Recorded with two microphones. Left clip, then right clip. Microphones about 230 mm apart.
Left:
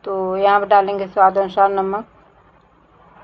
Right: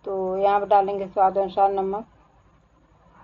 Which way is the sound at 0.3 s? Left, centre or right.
Centre.